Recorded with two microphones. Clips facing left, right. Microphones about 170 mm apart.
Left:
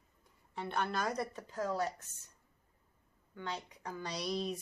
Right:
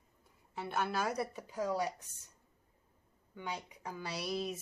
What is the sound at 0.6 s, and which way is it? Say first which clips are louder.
Speech: even; 5° right (ahead or behind).